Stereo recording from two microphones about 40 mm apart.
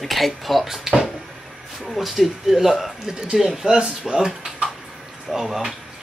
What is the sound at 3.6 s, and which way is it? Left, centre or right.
Speech, centre.